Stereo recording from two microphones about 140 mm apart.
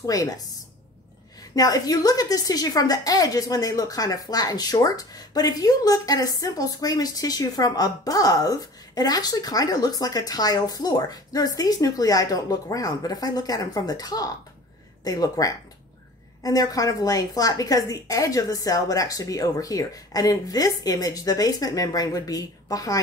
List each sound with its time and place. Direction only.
0.0 s a woman's voice: 25° left (ahead or behind)
1.5 s a woman's voice: 25° left (ahead or behind)